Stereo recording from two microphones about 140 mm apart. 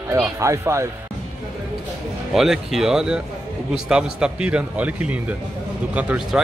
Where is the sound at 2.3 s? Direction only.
Centre (ahead or behind).